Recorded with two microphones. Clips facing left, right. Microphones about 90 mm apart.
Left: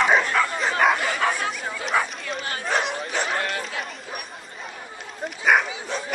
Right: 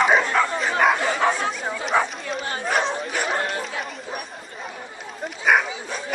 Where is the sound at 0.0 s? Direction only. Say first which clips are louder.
Right 1 dB; 5° right (ahead or behind).